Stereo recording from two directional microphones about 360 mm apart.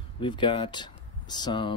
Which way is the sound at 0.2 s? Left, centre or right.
Centre.